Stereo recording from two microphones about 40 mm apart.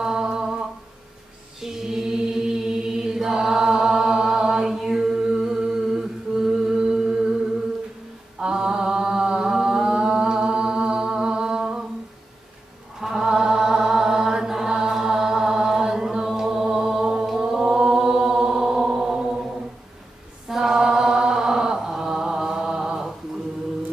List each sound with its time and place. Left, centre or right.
0.0 s humming: centre
1.6 s chant: centre
5.8 s humming: centre
8.4 s mantra: centre
13.0 s chant: centre
20.4 s chant: centre